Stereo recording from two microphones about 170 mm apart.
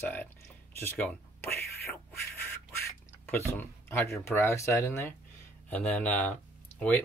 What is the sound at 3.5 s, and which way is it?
Speech, 10° left (ahead or behind).